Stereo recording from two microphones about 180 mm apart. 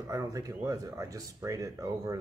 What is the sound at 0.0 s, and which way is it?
Speech, 20° right (ahead or behind).